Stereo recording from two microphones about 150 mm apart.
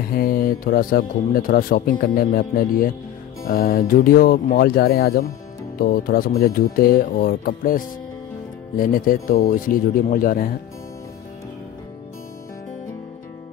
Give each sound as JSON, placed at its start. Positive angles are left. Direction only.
{"t": 0.1, "sound": "speech", "side_deg": 75}